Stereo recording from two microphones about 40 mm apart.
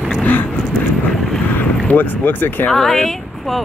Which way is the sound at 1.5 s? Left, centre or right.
Left.